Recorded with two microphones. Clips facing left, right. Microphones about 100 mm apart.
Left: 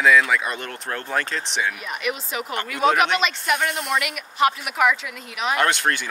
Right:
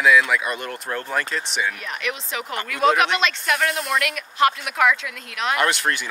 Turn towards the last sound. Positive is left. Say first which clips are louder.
# even
turn(degrees=-5)  # may be behind; listen again after turning